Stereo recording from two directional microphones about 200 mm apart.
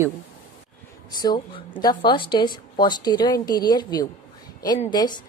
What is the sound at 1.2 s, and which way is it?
A woman's voice, 20° left (ahead or behind).